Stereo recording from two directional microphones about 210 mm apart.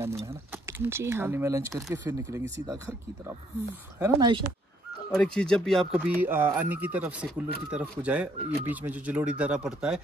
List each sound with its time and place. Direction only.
0.5 s speech: 10° right (ahead or behind)
4.0 s a woman's voice: 20° right (ahead or behind)
5.1 s speech: 5° left (ahead or behind)